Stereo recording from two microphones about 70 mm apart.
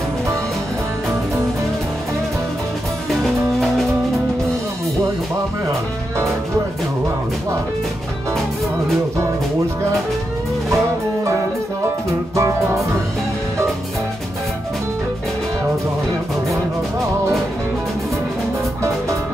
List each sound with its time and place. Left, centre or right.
12.4 s music: right